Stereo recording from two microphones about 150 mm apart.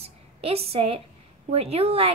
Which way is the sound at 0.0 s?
40° right (ahead or behind).